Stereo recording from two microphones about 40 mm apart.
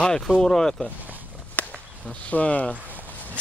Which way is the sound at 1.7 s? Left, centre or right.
Left.